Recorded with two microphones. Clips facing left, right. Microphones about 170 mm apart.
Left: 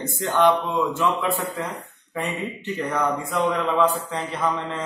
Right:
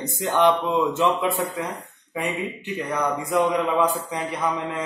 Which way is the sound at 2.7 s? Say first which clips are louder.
Left 1 dB; 15° right (ahead or behind).